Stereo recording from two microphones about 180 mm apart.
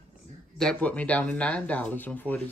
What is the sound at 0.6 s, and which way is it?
Speech, 5° left (ahead or behind).